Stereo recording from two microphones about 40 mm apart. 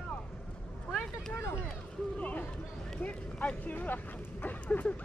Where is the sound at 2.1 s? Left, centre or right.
Left.